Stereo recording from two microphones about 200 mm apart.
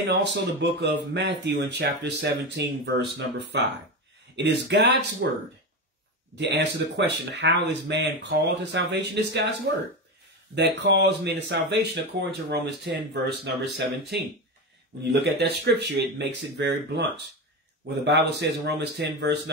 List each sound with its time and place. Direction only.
0.2 s speech: 60° right (ahead or behind)
6.3 s speech: 60° right (ahead or behind)
10.5 s speech: 60° right (ahead or behind)
18.0 s speech: 60° right (ahead or behind)